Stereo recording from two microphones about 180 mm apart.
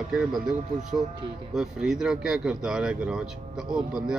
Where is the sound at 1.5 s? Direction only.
Centre (ahead or behind).